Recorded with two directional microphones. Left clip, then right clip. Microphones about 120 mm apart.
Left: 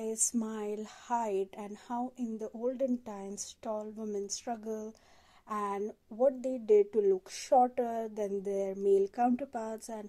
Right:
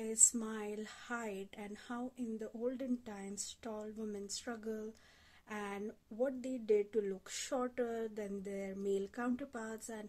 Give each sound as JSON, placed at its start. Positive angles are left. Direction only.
{"t": 0.0, "sound": "speech", "side_deg": 30}